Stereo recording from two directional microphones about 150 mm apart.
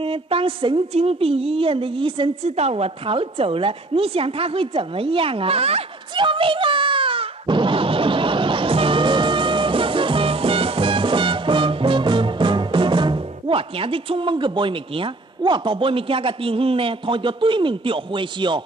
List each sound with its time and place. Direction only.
0.0 s a woman's voice: 35° right (ahead or behind)